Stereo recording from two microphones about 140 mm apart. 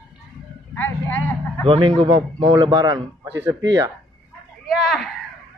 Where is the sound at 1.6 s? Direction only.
40° right (ahead or behind).